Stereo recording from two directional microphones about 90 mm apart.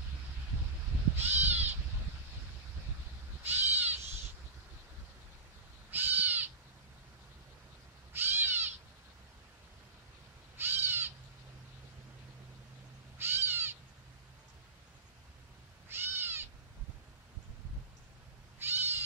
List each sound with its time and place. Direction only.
1.1 s crow: 20° right (ahead or behind)
3.4 s owl: 20° right (ahead or behind)
5.9 s crow: 20° right (ahead or behind)
8.1 s cat: 25° right (ahead or behind)
10.6 s crow: 25° right (ahead or behind)
13.2 s owl: 25° right (ahead or behind)
15.9 s owl: 25° right (ahead or behind)
18.6 s cat: 25° right (ahead or behind)